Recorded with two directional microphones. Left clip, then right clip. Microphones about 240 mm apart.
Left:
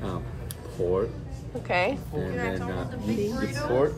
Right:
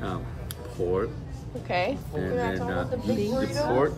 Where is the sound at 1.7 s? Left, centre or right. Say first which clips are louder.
Left 2 dB; centre.